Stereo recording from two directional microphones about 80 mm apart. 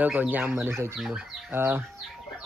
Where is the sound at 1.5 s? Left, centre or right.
Right.